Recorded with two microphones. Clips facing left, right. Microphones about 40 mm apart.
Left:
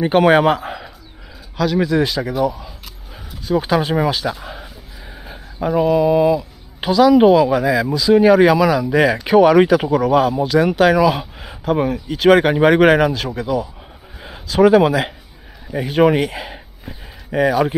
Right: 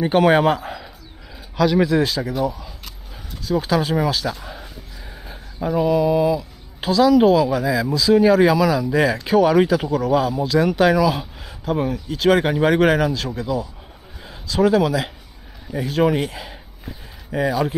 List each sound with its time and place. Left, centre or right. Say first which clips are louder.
0.0 s a man's voice: left 3 dB; centre
1.6 s speech: right 1 dB; centre
2.0 s speech: left 2 dB; centre
3.6 s speech: left 2 dB; left
12.2 s speech: left 5 dB; left